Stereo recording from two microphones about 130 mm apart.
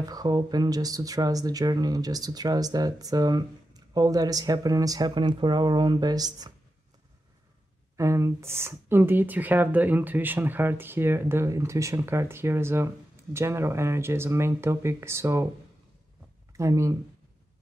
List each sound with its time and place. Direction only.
0.0 s speech: 30° right (ahead or behind)
8.0 s speech: 20° right (ahead or behind)
16.5 s speech: 25° right (ahead or behind)